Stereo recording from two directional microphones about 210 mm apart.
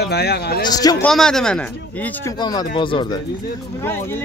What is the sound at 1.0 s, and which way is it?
Speech, centre (ahead or behind).